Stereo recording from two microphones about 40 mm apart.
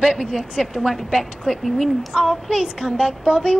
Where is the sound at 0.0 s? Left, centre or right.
Centre.